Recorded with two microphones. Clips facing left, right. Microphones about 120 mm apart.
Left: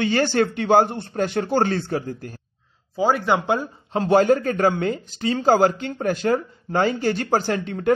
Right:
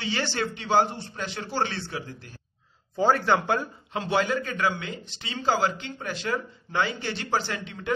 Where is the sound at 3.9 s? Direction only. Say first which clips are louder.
Left 9 dB; 45° left (ahead or behind).